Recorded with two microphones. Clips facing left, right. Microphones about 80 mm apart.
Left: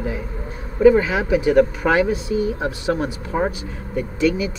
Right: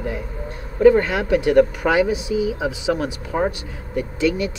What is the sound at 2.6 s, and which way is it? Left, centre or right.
Speech, centre.